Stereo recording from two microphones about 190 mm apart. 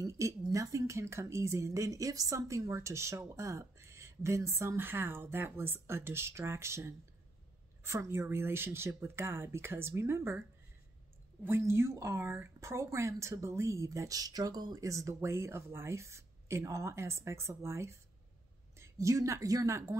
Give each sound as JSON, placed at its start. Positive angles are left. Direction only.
{"t": 0.5, "sound": "speech", "side_deg": -15}
{"t": 11.4, "sound": "speech", "side_deg": -15}